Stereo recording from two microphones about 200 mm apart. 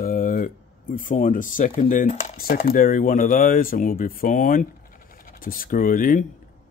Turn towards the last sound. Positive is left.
turn(degrees=45)  # may be behind; listen again after turning